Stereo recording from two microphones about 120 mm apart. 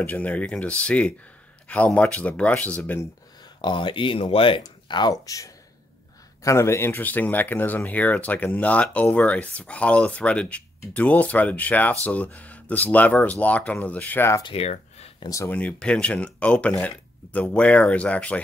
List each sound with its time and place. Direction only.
0.0 s speech: 15° left (ahead or behind)
3.6 s speech: 40° left (ahead or behind); by 14.3 s 15° left (ahead or behind)
14.4 s a sound: 55° left (ahead or behind)
15.4 s speech: 10° left (ahead or behind)